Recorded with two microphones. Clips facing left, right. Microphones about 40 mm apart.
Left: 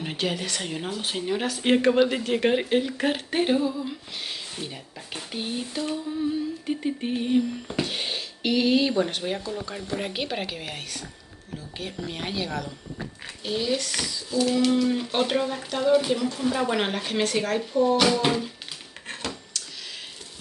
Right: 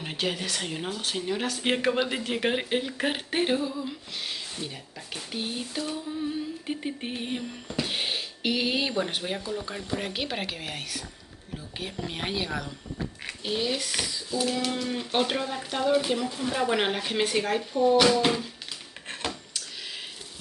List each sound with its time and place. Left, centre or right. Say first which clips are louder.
0.0 s a child's voice: left 2 dB; centre
6.7 s a child's voice: left 6 dB; centre
19.0 s a sound: even; centre